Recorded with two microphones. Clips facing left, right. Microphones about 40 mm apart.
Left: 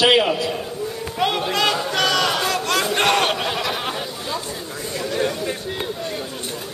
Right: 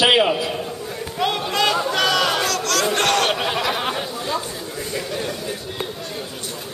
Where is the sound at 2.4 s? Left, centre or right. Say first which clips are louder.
Even; centre.